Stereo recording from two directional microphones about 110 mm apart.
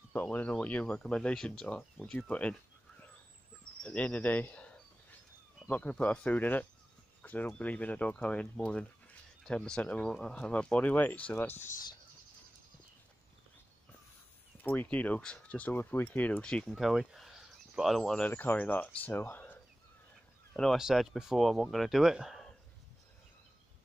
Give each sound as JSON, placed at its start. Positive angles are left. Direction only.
{"t": 0.1, "sound": "speech", "side_deg": 15}
{"t": 3.8, "sound": "speech", "side_deg": 10}
{"t": 14.6, "sound": "speech", "side_deg": 15}
{"t": 18.3, "sound": "speech", "side_deg": 15}
{"t": 20.5, "sound": "speech", "side_deg": 5}